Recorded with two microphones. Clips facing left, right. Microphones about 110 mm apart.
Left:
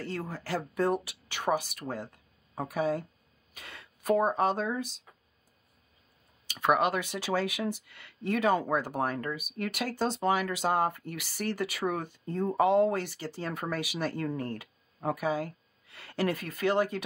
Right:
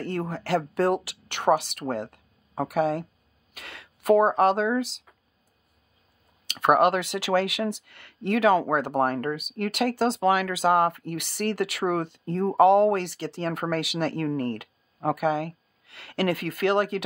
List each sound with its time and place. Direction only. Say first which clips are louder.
0.0 s speech: right 6 dB; 60° right (ahead or behind); by 5.0 s 85° right
6.4 s speech: right 6 dB; 70° right (ahead or behind)